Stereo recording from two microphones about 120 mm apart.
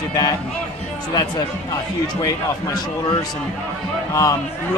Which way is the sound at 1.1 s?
35° left (ahead or behind).